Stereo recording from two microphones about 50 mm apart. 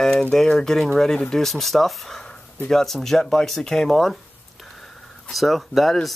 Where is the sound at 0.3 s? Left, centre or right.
Centre.